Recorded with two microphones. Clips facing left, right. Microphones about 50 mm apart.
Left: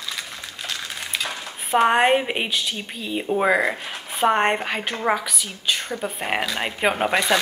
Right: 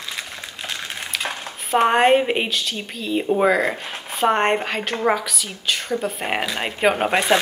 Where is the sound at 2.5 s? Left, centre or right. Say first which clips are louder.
Even; centre.